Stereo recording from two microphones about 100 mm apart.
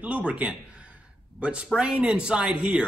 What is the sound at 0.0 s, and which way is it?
A man's voice, 15° right (ahead or behind).